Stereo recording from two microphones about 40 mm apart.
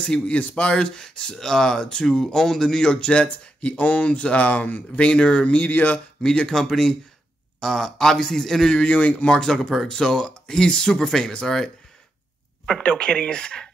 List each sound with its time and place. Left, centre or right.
0.0 s speech: left
0.7 s speech: centre; by 4.6 s left
4.9 s speech: left
5.7 s speech: left
6.2 s speech: left
6.5 s speech: centre
8.7 s speech: left
9.3 s speech: centre
12.7 s speech: left